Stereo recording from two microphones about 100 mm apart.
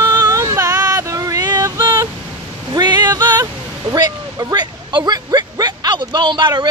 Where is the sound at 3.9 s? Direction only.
40° right (ahead or behind).